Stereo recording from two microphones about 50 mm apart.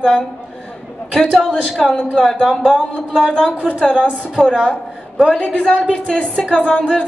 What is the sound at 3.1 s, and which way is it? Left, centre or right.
A woman's voice, right.